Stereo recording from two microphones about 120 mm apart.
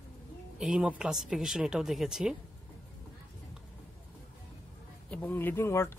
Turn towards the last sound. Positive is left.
turn(degrees=20)  # may be behind; listen again after turning